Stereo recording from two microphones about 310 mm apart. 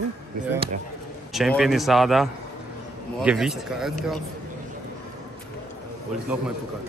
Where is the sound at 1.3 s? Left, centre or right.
Centre.